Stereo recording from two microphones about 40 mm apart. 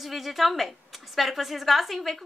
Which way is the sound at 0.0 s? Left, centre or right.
Centre.